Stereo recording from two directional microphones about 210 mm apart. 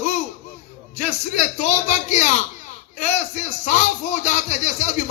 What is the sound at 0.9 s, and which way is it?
A man's voice, 35° left (ahead or behind).